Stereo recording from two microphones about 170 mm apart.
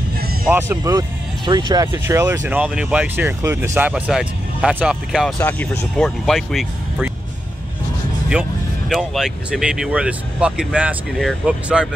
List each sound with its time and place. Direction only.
0.5 s speech: 10° right (ahead or behind)
5.4 s speech: 10° left (ahead or behind)
8.3 s speech: 5° right (ahead or behind)